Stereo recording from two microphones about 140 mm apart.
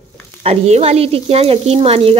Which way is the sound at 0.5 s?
50° right (ahead or behind).